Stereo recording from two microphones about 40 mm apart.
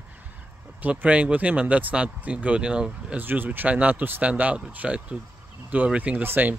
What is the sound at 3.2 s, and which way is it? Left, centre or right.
Speech, right.